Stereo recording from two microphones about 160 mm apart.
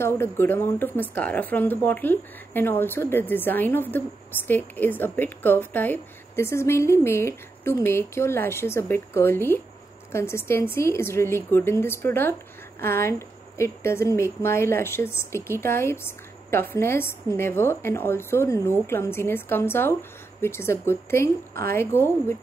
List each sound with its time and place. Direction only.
0.0 s a woman's voice: 15° left (ahead or behind)